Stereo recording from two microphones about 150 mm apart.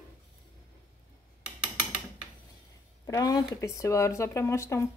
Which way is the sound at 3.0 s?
25° left (ahead or behind).